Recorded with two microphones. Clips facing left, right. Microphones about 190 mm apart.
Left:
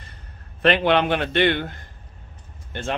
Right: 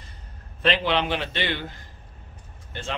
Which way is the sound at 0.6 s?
55° left (ahead or behind).